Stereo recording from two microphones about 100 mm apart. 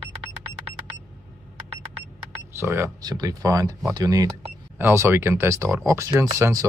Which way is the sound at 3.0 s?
40° right (ahead or behind).